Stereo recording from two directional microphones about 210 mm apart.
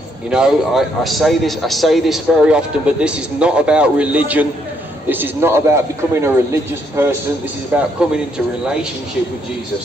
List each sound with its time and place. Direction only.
0.3 s a man's voice: centre (ahead or behind)